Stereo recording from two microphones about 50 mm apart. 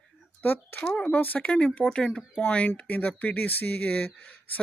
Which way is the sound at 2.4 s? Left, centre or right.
Left.